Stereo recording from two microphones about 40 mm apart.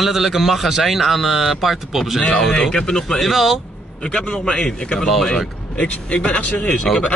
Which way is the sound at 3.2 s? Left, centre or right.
Centre.